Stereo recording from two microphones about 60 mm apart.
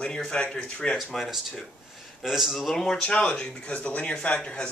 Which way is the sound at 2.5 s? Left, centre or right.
Centre.